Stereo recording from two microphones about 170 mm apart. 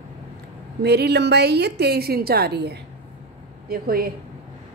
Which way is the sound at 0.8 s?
75° right (ahead or behind).